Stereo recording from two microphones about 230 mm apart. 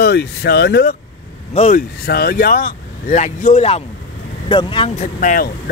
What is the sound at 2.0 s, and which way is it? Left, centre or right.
Speech, left.